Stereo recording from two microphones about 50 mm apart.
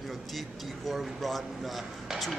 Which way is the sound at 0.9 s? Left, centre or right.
Centre.